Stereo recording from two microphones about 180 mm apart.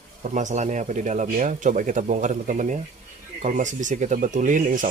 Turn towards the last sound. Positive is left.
turn(degrees=-45)  # may be behind; listen again after turning